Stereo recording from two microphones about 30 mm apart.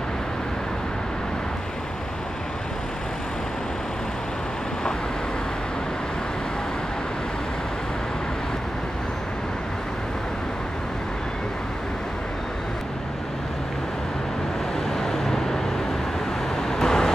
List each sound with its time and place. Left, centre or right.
14.9 s vehicle: centre